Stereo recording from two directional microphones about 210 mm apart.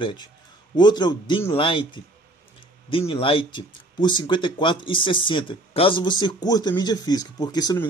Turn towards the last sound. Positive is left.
turn(degrees=20)  # may be behind; listen again after turning